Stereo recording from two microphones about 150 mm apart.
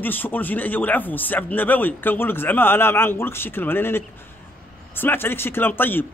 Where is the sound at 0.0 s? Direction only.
10° left (ahead or behind).